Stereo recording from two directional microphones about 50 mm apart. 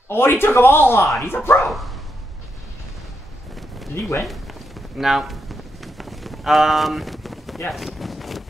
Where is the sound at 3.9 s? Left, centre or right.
Left.